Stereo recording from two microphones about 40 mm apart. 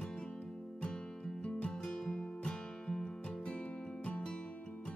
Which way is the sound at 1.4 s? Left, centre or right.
Left.